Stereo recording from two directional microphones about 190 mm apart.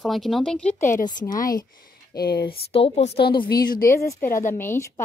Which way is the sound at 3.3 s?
20° left (ahead or behind).